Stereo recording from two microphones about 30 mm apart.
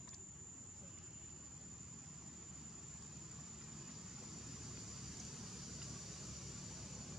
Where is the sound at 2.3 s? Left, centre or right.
Centre.